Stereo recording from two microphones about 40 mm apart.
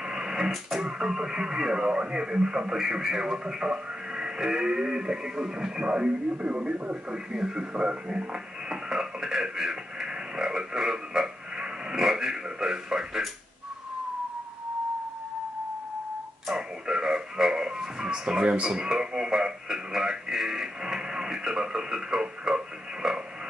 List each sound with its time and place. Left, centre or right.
0.0 s a sound: centre
0.7 s speech: centre
16.5 s radio: centre
18.7 s speech: centre